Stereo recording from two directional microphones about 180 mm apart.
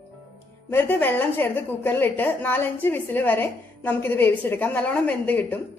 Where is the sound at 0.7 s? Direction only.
10° left (ahead or behind).